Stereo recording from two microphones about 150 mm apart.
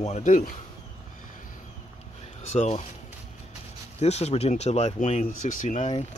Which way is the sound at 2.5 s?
45° left (ahead or behind).